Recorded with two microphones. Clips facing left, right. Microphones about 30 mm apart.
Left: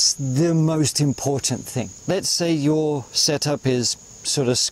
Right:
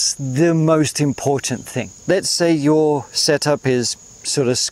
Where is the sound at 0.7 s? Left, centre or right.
Right.